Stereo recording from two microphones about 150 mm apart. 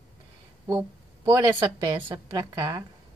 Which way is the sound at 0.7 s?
20° right (ahead or behind).